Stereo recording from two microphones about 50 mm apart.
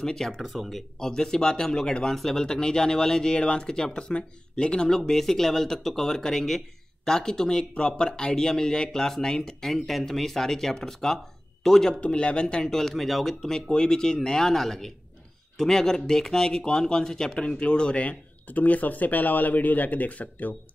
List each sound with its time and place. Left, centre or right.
0.0 s speech: centre
0.4 s speech: centre
0.9 s speech: centre
12.0 s speech: left